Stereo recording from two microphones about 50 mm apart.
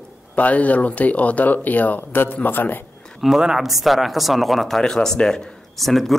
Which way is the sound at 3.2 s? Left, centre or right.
Centre.